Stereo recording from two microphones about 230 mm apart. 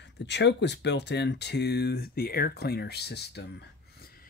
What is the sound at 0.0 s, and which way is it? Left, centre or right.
Speech, left.